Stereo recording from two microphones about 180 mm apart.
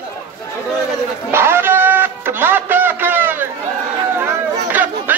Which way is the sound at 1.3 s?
15° right (ahead or behind).